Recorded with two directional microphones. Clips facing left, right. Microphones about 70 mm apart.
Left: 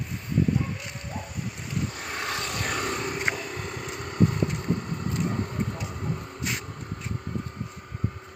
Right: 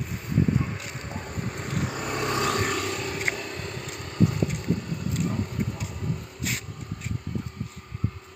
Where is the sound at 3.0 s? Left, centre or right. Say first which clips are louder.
Left 1 dB; centre.